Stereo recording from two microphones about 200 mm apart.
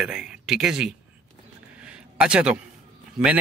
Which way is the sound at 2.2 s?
5° right (ahead or behind).